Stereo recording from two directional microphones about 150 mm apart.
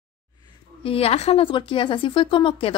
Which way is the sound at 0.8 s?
40° left (ahead or behind).